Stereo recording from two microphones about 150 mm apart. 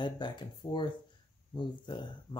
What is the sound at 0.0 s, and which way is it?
Speech, 30° left (ahead or behind).